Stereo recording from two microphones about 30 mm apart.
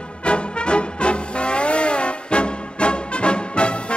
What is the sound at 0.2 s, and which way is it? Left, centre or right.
Music, left.